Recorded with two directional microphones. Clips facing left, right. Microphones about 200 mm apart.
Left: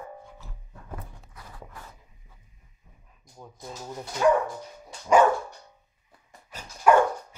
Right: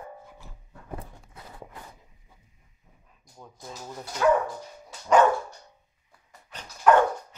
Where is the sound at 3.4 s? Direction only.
10° left (ahead or behind).